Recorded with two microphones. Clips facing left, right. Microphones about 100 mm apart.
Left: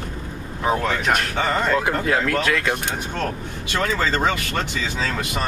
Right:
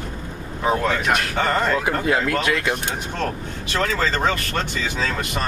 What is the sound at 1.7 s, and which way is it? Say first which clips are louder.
Speech: left 1 dB; 5° right (ahead or behind).